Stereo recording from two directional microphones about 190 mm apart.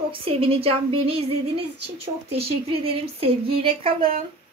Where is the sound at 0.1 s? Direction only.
30° right (ahead or behind).